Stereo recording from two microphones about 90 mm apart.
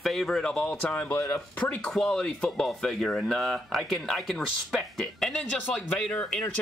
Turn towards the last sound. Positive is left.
turn(degrees=5)  # may be behind; listen again after turning